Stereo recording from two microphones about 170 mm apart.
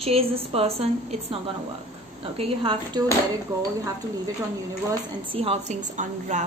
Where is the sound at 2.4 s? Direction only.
30° right (ahead or behind).